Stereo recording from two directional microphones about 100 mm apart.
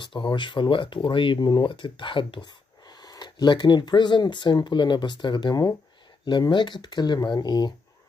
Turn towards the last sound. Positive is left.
turn(degrees=45)  # may be behind; listen again after turning